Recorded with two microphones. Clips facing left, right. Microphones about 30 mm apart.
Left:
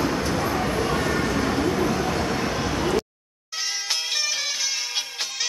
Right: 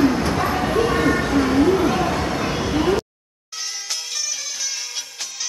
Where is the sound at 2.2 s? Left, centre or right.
Right.